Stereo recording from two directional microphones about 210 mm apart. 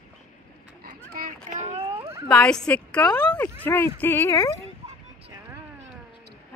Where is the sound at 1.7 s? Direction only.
25° right (ahead or behind).